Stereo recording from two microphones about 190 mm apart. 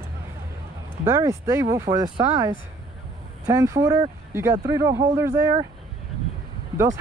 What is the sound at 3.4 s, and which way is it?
Speech, 15° right (ahead or behind).